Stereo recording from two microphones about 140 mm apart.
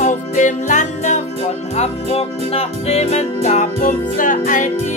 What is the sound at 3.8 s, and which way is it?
Music, 75° left (ahead or behind).